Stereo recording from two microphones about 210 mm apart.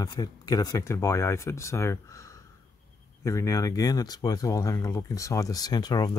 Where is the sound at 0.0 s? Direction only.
20° left (ahead or behind).